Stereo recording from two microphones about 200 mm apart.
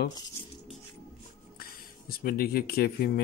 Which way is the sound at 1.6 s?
45° left (ahead or behind).